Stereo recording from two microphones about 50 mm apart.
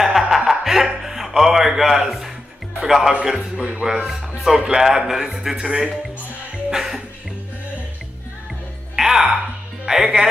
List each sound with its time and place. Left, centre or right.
0.0 s music: centre
2.8 s speech: centre
6.7 s music: centre
8.9 s music: centre
9.8 s speech: centre